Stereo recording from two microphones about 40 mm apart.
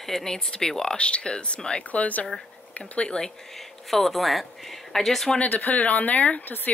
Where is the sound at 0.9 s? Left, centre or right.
Left.